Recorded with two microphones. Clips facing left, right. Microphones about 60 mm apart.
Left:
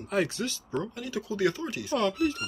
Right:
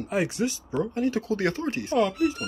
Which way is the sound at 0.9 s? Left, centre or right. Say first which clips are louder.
Right 8 dB; right.